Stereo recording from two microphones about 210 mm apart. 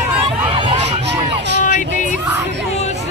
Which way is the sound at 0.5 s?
25° right (ahead or behind).